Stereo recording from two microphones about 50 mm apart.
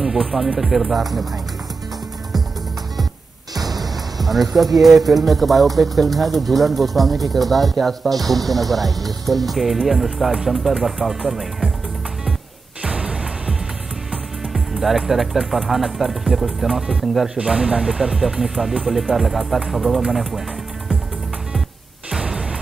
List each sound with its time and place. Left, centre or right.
0.0 s speech: centre
3.6 s speech: centre
12.8 s music: right
14.1 s speech: centre
17.4 s speech: centre